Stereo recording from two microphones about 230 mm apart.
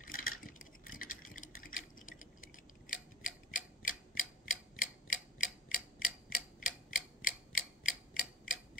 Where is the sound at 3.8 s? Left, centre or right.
Left.